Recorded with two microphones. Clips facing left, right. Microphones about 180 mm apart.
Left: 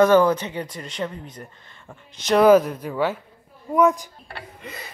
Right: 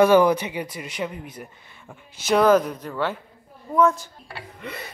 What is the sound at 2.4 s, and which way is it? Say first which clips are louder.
Speech: left 4 dB; 5° left (ahead or behind).